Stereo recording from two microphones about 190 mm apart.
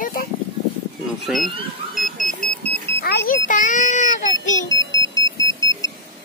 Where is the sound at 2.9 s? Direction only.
55° left (ahead or behind).